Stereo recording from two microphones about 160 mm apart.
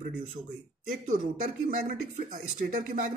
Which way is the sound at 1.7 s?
55° right (ahead or behind).